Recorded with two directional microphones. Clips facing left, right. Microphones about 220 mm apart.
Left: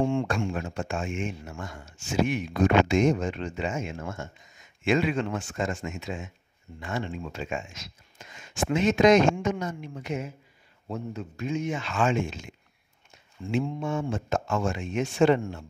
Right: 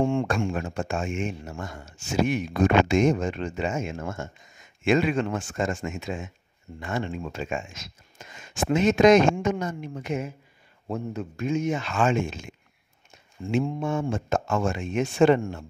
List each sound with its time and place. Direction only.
0.0 s speech: 50° right (ahead or behind)